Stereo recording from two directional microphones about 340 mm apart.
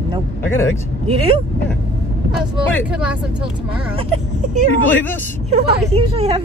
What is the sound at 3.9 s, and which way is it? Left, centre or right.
A woman's voice, centre.